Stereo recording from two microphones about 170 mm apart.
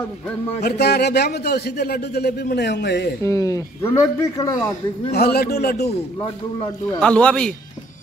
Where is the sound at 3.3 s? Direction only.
20° left (ahead or behind).